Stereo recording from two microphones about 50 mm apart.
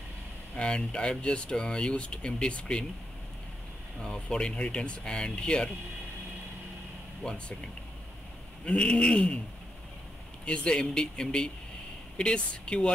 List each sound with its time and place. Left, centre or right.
0.6 s speech: centre
4.0 s speech: centre
7.2 s speech: centre
10.4 s speech: left